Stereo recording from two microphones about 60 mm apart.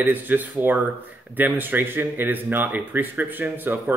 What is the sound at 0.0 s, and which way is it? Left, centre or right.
A man's voice, right.